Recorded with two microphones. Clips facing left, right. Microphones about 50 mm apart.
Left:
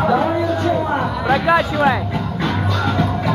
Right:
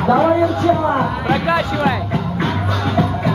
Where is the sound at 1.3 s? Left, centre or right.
Centre.